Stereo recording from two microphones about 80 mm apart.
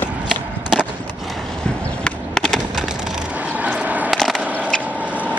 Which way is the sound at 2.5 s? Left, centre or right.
Centre.